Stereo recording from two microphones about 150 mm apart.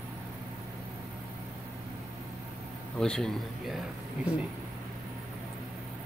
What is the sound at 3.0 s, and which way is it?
Speech, 5° left (ahead or behind).